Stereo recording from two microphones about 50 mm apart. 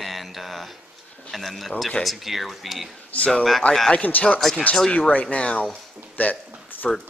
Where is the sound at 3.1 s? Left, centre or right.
Left.